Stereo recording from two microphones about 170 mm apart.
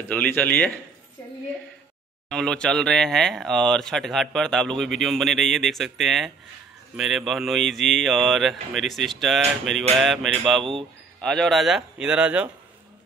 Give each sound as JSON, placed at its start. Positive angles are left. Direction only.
{"t": 0.1, "sound": "speech", "side_deg": 10}
{"t": 2.2, "sound": "speech", "side_deg": 5}
{"t": 10.6, "sound": "speech", "side_deg": -30}
{"t": 11.2, "sound": "speech", "side_deg": 0}